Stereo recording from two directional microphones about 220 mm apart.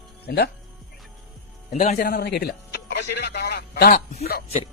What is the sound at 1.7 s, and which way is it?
Speech, 35° left (ahead or behind).